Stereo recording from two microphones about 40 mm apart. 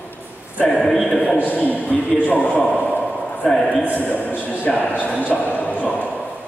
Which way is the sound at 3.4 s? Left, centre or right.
Centre.